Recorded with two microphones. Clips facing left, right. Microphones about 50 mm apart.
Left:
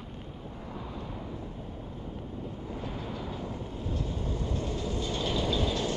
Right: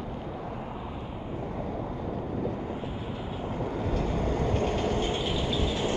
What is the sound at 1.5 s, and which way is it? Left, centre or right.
Vehicle, right.